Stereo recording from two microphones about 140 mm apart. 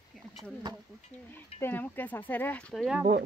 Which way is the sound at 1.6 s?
15° left (ahead or behind).